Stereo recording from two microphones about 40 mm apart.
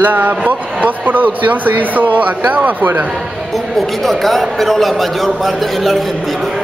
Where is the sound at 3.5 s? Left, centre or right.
Centre.